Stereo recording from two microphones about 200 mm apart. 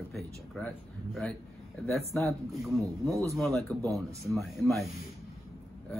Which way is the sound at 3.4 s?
Centre (ahead or behind).